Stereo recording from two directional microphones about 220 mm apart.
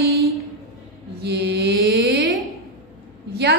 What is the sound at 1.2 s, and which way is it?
A woman's voice, 50° right (ahead or behind).